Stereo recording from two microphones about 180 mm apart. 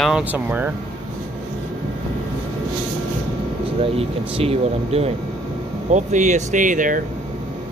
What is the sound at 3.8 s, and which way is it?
Speech, 30° right (ahead or behind).